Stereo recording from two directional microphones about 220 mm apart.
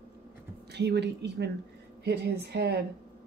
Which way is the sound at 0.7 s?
50° right (ahead or behind).